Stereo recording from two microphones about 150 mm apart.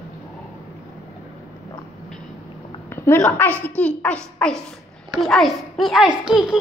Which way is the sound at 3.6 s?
10° left (ahead or behind).